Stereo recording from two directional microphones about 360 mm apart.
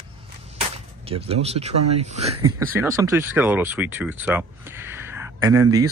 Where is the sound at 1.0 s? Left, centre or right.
Centre.